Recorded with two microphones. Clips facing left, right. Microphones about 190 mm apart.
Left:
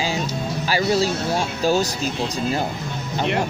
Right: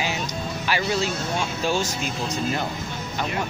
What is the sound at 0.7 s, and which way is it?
Speech, 35° left (ahead or behind).